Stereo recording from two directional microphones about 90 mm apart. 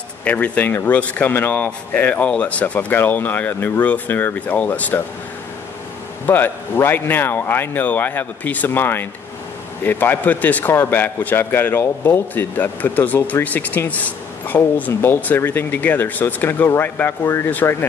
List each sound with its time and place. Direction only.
0.2 s a man's voice: 15° left (ahead or behind)
6.2 s a man's voice: 20° left (ahead or behind)